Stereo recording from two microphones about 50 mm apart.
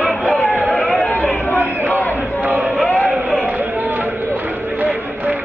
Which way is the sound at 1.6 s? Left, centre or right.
Right.